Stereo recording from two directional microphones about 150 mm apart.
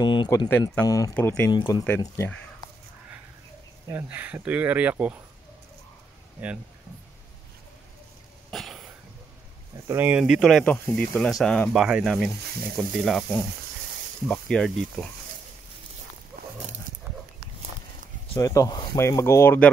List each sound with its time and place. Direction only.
0.0 s a sound: 30° left (ahead or behind)
0.5 s speech: 15° left (ahead or behind)
0.8 s speech: 25° left (ahead or behind)
1.1 s speech: 10° left (ahead or behind)
1.5 s speech: 25° left (ahead or behind)
3.9 s speech: 10° right (ahead or behind)
8.5 s cough: centre (ahead or behind)
9.8 s speech: 15° right (ahead or behind)
10.6 s speech: 10° left (ahead or behind)
14.2 s speech: 5° left (ahead or behind)
18.3 s speech: 20° left (ahead or behind)